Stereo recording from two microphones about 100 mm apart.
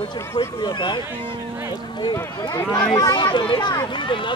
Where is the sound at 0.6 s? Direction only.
50° left (ahead or behind).